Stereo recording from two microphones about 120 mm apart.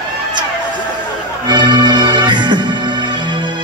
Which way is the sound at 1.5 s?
40° right (ahead or behind).